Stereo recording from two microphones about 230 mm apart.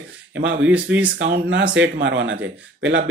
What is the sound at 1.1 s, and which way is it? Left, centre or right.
Speech, right.